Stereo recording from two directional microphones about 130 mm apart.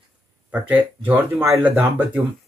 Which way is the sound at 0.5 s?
15° right (ahead or behind).